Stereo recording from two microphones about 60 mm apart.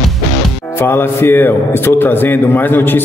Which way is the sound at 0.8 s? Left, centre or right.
Left.